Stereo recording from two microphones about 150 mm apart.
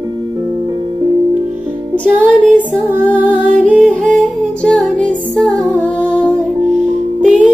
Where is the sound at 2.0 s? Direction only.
5° left (ahead or behind).